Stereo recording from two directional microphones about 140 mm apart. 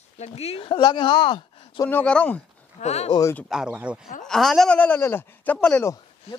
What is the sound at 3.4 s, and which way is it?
Speech, 5° right (ahead or behind).